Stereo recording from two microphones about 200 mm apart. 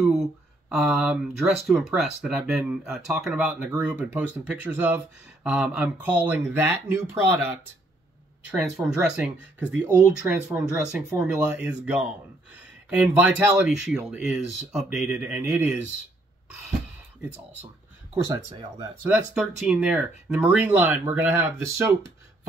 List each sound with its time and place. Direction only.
0.0 s speech: centre (ahead or behind)
18.1 s speech: 15° right (ahead or behind)
19.0 s speech: 5° right (ahead or behind)